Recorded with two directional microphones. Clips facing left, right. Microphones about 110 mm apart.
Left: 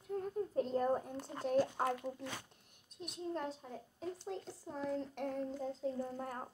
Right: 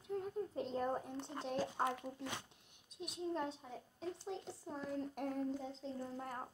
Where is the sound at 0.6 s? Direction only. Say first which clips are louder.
Left 6 dB; 5° left (ahead or behind).